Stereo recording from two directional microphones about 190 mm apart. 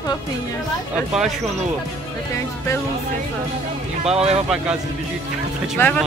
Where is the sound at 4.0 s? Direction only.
35° right (ahead or behind).